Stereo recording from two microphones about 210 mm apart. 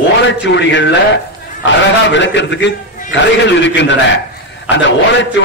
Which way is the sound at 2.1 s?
60° left (ahead or behind).